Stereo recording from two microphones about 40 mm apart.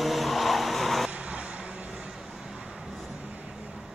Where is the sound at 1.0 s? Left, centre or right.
Right.